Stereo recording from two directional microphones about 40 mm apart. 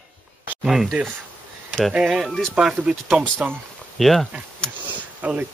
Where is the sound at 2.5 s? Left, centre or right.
Right.